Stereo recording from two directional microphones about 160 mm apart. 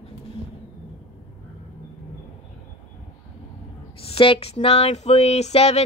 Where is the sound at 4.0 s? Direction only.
35° left (ahead or behind).